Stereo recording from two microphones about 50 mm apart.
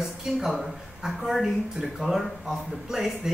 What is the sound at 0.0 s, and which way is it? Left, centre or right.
A woman's voice, centre.